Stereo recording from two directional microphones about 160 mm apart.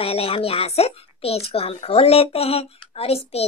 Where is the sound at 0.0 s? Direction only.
35° left (ahead or behind).